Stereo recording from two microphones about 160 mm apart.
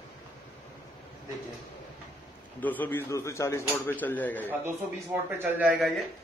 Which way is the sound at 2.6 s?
10° left (ahead or behind).